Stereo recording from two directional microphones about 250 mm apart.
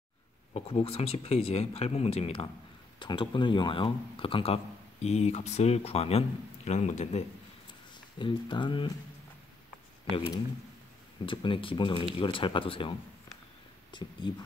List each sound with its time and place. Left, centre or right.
0.5 s speech: left
10.1 s speech: left